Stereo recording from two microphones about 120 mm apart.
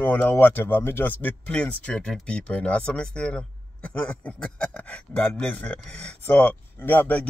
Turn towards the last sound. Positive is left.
turn(degrees=15)  # may be behind; listen again after turning